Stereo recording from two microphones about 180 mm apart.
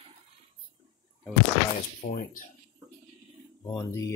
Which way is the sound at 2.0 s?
50° left (ahead or behind).